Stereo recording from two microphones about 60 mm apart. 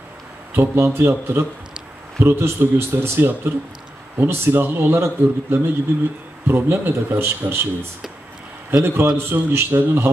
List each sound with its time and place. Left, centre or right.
0.5 s a man's voice: right
8.8 s speech: right